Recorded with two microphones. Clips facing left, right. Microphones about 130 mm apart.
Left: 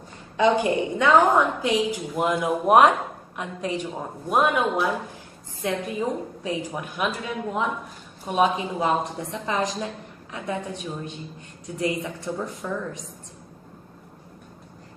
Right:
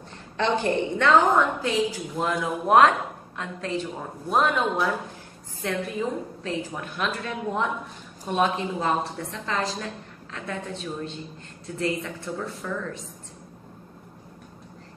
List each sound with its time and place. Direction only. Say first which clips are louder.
0.4 s a woman's voice: left 3 dB; 10° left (ahead or behind)